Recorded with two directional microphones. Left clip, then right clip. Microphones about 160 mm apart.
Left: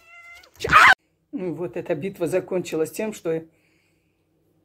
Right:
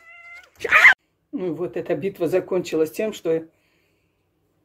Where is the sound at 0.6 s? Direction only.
20° left (ahead or behind).